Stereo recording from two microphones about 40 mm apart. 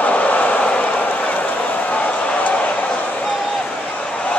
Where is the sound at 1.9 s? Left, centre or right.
Left.